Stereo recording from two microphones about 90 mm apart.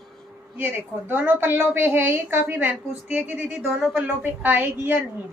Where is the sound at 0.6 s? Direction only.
25° right (ahead or behind).